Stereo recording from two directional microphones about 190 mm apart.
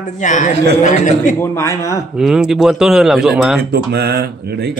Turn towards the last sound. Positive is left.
turn(degrees=-60)  # may be behind; listen again after turning